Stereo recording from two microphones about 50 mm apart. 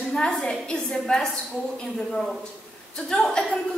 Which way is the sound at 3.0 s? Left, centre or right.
Centre.